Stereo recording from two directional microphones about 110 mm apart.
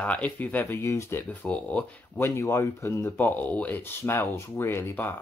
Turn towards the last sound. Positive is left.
turn(degrees=20)  # may be behind; listen again after turning